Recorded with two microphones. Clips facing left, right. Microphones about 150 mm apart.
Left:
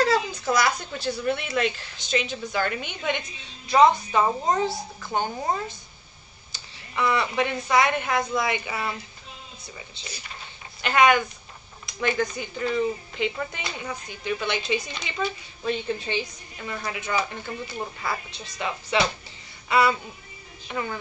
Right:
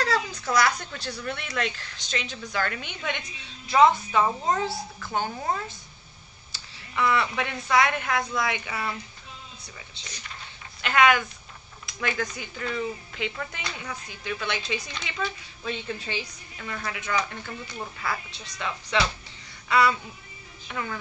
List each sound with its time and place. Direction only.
0.0 s speech: centre (ahead or behind)
4.2 s a woman's voice: 15° left (ahead or behind)
4.6 s speech: centre (ahead or behind)
5.3 s a woman's voice: 15° left (ahead or behind)
6.5 s a woman's voice: centre (ahead or behind)
18.3 s speech: centre (ahead or behind)
19.7 s speech: 5° left (ahead or behind)